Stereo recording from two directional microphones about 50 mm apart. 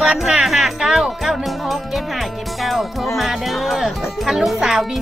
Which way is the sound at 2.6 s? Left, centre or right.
Centre.